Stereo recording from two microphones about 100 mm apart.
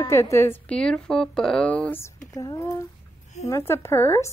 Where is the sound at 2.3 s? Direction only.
40° left (ahead or behind).